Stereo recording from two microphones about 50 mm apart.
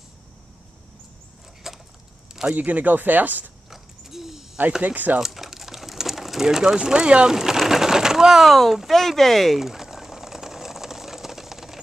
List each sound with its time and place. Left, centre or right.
1.6 s a sound: centre
2.5 s speech: right
3.7 s mechanisms: centre
4.8 s speech: right
5.2 s speech: centre
9.6 s a sound: centre